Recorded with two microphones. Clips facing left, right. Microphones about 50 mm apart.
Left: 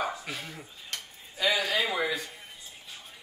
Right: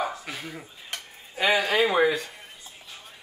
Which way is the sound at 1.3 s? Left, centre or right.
Right.